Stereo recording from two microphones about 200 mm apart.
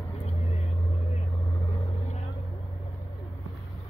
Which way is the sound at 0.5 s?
35° left (ahead or behind).